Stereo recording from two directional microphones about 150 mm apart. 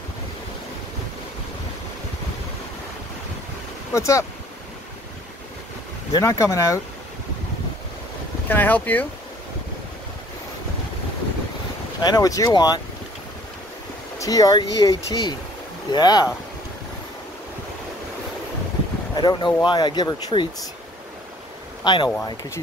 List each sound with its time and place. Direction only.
3.9 s speech: 20° left (ahead or behind)
6.1 s speech: 20° left (ahead or behind)
8.5 s speech: 10° left (ahead or behind)
12.0 s speech: 25° left (ahead or behind)
14.1 s speech: 20° left (ahead or behind)
19.1 s speech: 30° left (ahead or behind)
21.8 s speech: 30° left (ahead or behind)